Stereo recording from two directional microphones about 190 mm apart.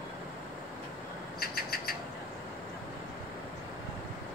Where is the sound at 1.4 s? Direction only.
55° left (ahead or behind).